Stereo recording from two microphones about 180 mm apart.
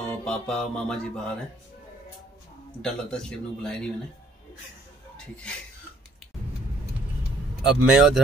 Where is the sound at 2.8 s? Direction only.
5° left (ahead or behind).